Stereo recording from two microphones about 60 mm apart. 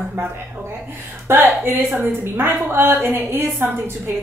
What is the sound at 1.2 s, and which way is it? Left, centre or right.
A woman's voice, right.